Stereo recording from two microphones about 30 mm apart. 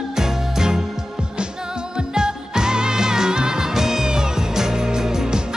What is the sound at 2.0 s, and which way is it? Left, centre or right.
Music, right.